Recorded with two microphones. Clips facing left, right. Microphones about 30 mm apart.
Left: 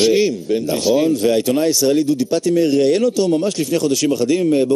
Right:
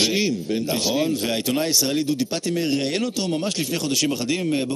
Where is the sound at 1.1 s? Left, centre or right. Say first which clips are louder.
Left 8 dB; centre.